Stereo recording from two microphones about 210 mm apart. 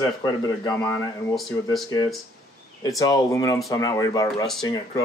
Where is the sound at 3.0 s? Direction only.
15° left (ahead or behind).